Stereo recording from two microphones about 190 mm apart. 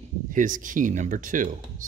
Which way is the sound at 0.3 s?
45° right (ahead or behind).